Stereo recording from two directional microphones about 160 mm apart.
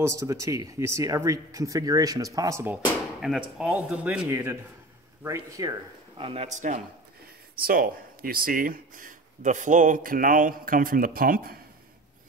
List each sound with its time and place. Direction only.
0.0 s speech: 20° right (ahead or behind)
3.2 s speech: 5° right (ahead or behind); by 5.8 s 20° right (ahead or behind)
6.1 s speech: 40° right (ahead or behind)
7.5 s speech: 65° right (ahead or behind)